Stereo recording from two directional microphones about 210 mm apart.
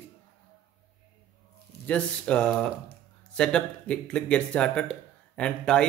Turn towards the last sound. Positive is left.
turn(degrees=5)  # may be behind; listen again after turning